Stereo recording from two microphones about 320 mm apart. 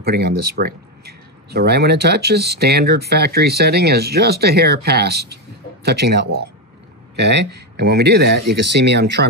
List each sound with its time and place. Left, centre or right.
0.0 s speech: right